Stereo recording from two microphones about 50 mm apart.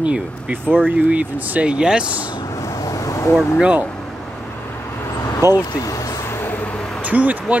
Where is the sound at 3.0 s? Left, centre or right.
Left.